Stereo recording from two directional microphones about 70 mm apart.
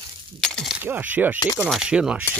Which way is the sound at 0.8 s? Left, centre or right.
Right.